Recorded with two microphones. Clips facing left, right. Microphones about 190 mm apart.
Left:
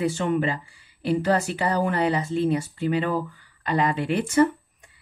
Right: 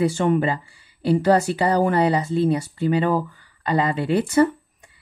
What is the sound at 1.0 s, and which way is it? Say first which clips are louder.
Speech: right 5 dB; 35° right (ahead or behind).